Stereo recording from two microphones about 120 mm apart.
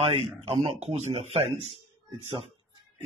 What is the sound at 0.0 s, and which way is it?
A man's voice, 50° right (ahead or behind).